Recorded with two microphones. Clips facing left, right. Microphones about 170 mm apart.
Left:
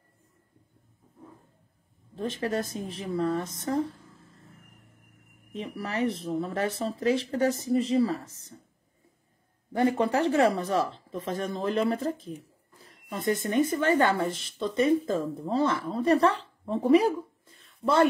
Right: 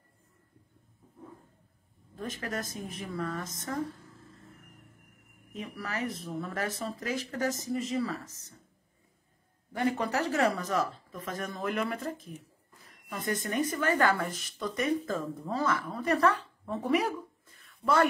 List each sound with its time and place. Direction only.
2.1 s speech: 30° left (ahead or behind)
5.5 s speech: 30° left (ahead or behind)
9.7 s a woman's voice: 25° left (ahead or behind)